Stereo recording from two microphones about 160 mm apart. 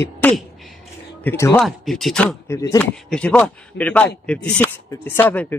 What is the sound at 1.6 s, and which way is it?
Speech, centre (ahead or behind).